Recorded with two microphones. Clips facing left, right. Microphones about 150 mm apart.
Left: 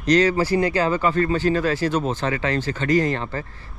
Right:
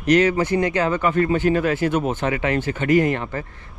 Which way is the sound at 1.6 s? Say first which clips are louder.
Right 1 dB; 35° left (ahead or behind).